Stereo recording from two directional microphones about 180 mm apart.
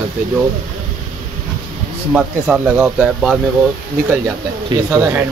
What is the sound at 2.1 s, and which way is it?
Speech, 5° right (ahead or behind).